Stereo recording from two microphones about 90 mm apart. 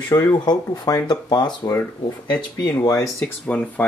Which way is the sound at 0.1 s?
40° left (ahead or behind).